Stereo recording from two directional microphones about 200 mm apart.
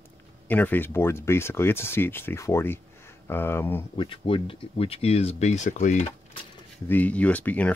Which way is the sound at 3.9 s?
25° left (ahead or behind).